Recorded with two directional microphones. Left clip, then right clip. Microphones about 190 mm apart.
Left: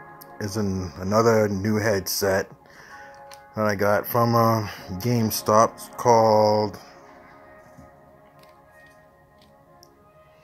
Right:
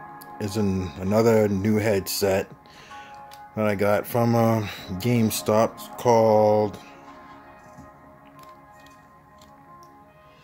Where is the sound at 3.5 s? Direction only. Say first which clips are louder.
Left 1 dB; 10° right (ahead or behind).